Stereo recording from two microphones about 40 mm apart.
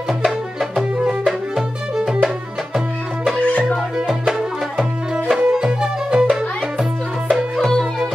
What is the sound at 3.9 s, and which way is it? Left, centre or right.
Music, centre.